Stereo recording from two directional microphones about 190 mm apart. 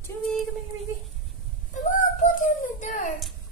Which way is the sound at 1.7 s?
40° left (ahead or behind).